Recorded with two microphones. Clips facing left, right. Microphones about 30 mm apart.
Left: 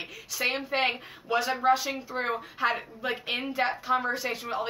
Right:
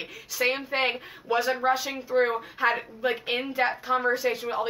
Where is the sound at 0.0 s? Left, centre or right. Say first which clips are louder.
Right 3 dB; centre.